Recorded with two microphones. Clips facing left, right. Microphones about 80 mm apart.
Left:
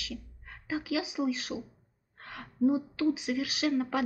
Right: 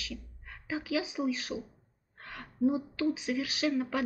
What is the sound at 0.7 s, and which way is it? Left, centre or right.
Speech, centre.